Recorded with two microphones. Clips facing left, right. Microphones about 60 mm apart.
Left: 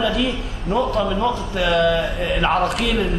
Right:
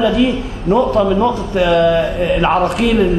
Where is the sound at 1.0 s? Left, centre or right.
Right.